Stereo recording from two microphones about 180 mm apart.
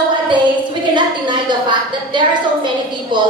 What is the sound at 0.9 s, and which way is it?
A woman's voice, 25° right (ahead or behind).